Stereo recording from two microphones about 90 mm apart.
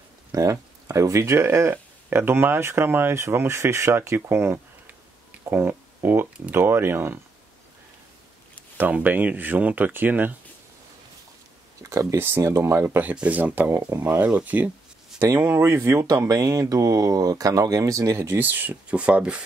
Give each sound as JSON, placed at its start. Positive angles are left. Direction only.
{"t": 0.3, "sound": "speech", "side_deg": -40}
{"t": 8.7, "sound": "speech", "side_deg": -20}
{"t": 11.8, "sound": "speech", "side_deg": -35}
{"t": 15.1, "sound": "speech", "side_deg": -35}